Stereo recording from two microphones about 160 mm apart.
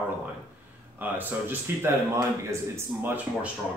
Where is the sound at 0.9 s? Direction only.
10° right (ahead or behind).